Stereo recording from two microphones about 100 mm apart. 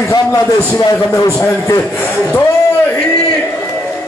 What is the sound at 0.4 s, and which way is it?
A man's voice, 30° left (ahead or behind).